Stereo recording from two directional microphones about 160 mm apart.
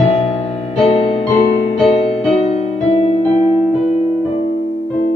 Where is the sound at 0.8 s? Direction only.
35° left (ahead or behind).